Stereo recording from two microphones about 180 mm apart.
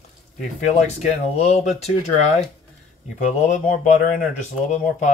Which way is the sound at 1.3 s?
40° left (ahead or behind).